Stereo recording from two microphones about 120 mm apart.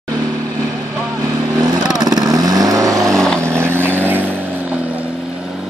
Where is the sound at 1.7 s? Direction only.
35° right (ahead or behind).